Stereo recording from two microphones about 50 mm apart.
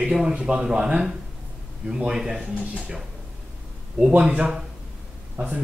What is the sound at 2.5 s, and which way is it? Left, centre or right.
Speech, right.